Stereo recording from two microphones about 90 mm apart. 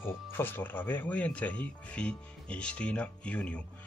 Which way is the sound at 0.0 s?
25° left (ahead or behind).